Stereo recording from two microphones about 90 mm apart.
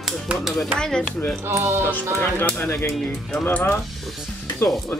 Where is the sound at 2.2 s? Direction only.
20° left (ahead or behind).